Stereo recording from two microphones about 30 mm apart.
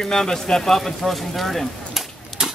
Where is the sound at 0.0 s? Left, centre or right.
Centre.